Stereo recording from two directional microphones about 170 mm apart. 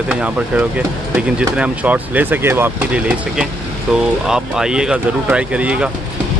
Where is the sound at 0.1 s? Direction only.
5° right (ahead or behind).